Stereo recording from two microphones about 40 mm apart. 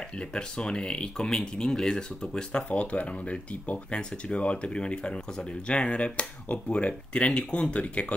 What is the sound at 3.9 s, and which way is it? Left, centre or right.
Speech, left.